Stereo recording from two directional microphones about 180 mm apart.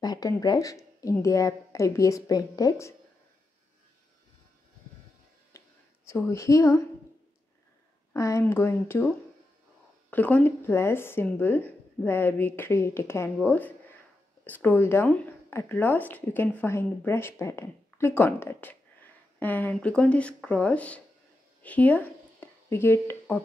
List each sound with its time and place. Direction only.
0.0 s speech: 20° left (ahead or behind)
5.5 s a sound: 15° left (ahead or behind)
6.0 s speech: 15° left (ahead or behind)
8.1 s speech: 15° left (ahead or behind)
10.1 s a woman's voice: 10° left (ahead or behind)